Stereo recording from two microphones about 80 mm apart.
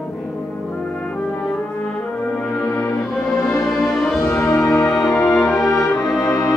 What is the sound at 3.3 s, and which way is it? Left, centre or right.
Music, centre.